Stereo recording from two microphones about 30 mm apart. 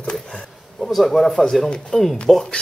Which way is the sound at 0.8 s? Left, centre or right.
Centre.